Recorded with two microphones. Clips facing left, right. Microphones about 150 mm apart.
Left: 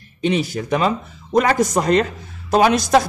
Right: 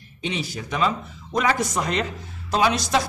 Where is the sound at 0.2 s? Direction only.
50° left (ahead or behind).